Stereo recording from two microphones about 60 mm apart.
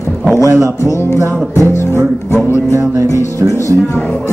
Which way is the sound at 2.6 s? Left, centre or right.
Right.